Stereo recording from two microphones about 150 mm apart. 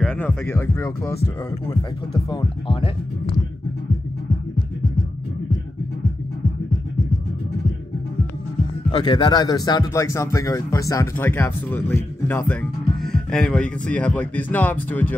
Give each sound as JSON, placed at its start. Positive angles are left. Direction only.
{"t": 0.0, "sound": "speech", "side_deg": 10}
{"t": 2.2, "sound": "speech", "side_deg": 30}
{"t": 8.9, "sound": "speech", "side_deg": 35}